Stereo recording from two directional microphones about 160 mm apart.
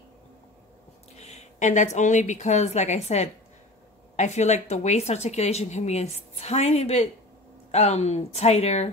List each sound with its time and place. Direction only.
1.1 s a woman's voice: 45° left (ahead or behind)